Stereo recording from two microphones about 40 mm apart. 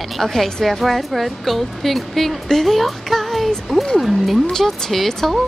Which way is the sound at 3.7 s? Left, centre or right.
Centre.